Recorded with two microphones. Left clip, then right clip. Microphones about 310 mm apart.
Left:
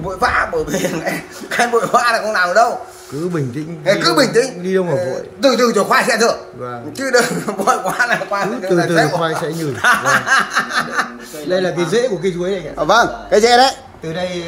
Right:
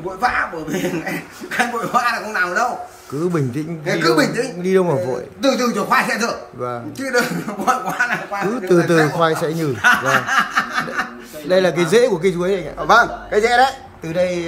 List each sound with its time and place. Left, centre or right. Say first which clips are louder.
0.2 s speech: left 4 dB; centre
3.3 s a man's voice: right 1 dB; centre
3.8 s speech: left 3 dB; centre
4.6 s a man's voice: right 1 dB; centre
4.9 s speech: left 2 dB; centre
8.7 s a man's voice: even; centre
9.8 s speech: left 2 dB; centre
11.5 s a man's voice: right 2 dB; centre
12.7 s a man's voice: left 1 dB; left
14.0 s a man's voice: right 3 dB; centre